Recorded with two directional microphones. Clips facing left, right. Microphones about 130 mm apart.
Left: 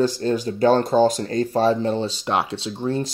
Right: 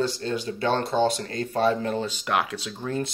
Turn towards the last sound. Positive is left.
turn(degrees=30)  # may be behind; listen again after turning